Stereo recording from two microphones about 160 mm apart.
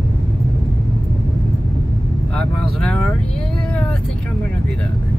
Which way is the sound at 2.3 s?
5° left (ahead or behind).